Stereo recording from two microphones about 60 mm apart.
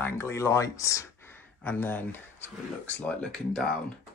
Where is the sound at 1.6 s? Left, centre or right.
Left.